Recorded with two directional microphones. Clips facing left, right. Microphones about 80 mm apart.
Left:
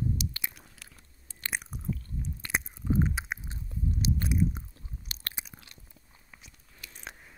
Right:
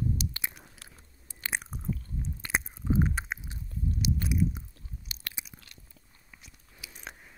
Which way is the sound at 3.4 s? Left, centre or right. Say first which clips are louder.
Even; left.